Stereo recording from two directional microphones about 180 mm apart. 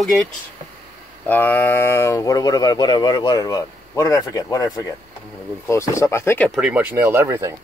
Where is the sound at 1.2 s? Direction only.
10° left (ahead or behind).